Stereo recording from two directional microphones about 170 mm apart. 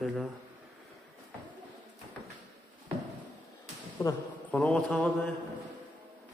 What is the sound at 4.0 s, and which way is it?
Speech, 25° left (ahead or behind).